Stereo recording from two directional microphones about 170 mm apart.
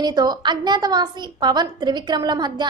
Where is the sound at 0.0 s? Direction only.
25° right (ahead or behind).